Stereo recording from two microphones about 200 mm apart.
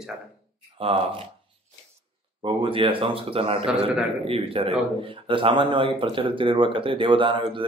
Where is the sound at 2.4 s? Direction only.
25° right (ahead or behind).